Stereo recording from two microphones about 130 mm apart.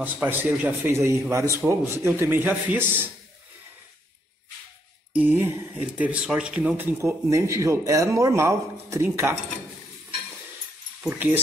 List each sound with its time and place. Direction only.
0.0 s speech: 15° right (ahead or behind)
5.1 s speech: 15° right (ahead or behind)
11.1 s speech: 15° right (ahead or behind)